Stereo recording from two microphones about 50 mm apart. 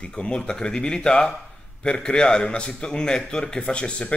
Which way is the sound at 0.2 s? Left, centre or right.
Centre.